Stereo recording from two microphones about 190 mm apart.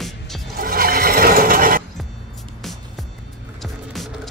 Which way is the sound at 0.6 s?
50° right (ahead or behind).